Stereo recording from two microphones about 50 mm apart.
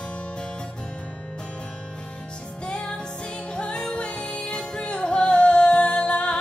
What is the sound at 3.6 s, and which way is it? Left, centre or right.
Music, centre.